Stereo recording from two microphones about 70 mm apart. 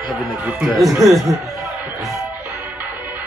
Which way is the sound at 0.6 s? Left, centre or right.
Centre.